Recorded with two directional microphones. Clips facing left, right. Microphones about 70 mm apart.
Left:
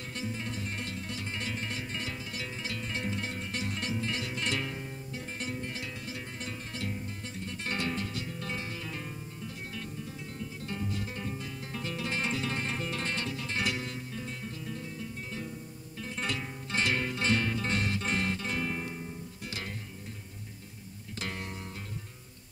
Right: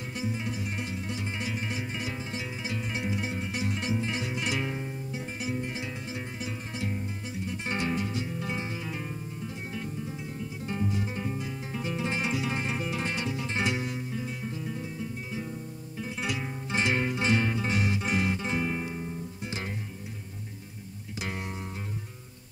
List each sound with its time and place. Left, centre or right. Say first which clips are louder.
0.2 s music: right 4 dB; centre
10.7 s music: right 6 dB; centre
21.2 s music: right 3 dB; centre